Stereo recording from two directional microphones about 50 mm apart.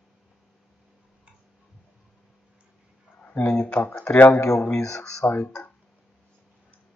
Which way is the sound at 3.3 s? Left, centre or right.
Left.